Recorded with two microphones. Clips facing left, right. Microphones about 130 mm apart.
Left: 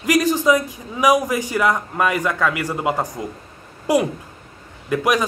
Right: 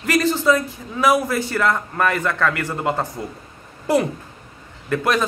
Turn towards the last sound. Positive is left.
turn(degrees=10)  # may be behind; listen again after turning